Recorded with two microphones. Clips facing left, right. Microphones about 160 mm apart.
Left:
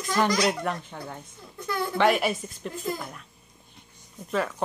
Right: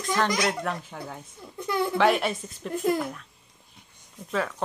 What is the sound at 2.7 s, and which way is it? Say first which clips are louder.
Speech: right 8 dB; 70° right (ahead or behind).